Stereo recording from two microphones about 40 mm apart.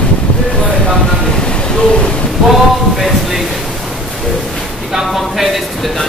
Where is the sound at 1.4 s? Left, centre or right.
Left.